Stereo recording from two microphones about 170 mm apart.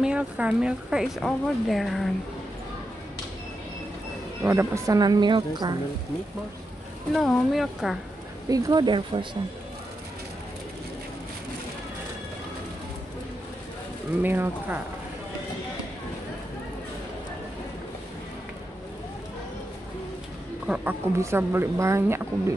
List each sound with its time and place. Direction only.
0.0 s a woman's voice: 5° right (ahead or behind)
4.4 s a woman's voice: 15° right (ahead or behind)
7.2 s a woman's voice: centre (ahead or behind)
8.5 s a woman's voice: 20° right (ahead or behind)
14.2 s speech: 10° right (ahead or behind)
20.6 s speech: 5° right (ahead or behind)